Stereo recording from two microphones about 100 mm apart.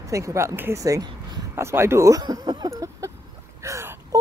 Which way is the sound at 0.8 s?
35° right (ahead or behind).